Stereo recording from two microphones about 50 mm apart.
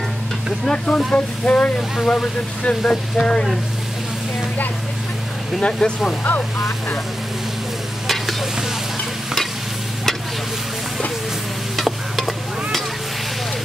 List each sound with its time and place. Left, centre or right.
0.7 s speech: centre
1.1 s speech: left
2.0 s speech: centre
5.6 s speech: centre
8.1 s stir: centre
11.7 s stir: centre